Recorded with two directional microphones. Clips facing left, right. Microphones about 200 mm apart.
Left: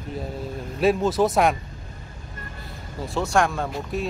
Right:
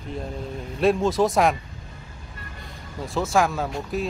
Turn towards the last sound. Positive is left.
turn(degrees=0)  # may be behind; listen again after turning